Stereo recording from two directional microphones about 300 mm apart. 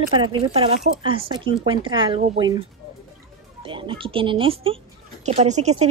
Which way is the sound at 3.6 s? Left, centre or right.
Centre.